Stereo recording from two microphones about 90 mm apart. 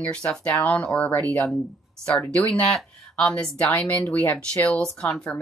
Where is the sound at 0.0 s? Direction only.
10° left (ahead or behind).